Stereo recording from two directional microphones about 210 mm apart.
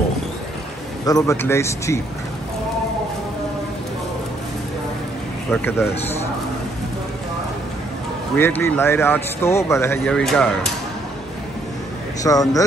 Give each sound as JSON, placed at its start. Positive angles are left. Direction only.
{"t": 1.0, "sound": "speech", "side_deg": 15}
{"t": 5.5, "sound": "speech", "side_deg": 10}
{"t": 8.4, "sound": "speech", "side_deg": 10}
{"t": 12.2, "sound": "speech", "side_deg": 15}